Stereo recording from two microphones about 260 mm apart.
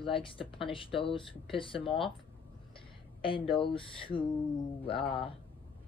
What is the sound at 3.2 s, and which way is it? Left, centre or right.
Speech, centre.